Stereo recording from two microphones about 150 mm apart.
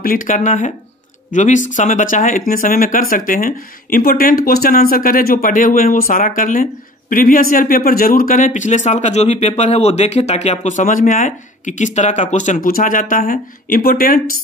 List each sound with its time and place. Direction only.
0.0 s speech: 70° left (ahead or behind)